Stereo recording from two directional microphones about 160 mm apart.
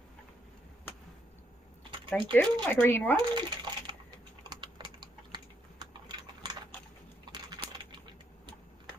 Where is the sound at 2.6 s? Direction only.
10° left (ahead or behind).